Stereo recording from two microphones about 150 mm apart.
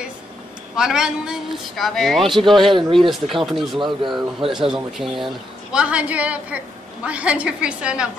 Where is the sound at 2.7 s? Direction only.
35° right (ahead or behind).